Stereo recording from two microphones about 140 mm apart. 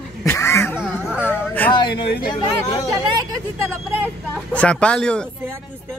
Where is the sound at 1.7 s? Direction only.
35° left (ahead or behind).